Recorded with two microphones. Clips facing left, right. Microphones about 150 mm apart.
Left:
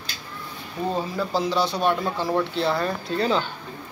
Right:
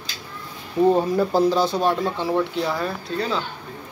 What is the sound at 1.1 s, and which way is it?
Speech, 45° right (ahead or behind).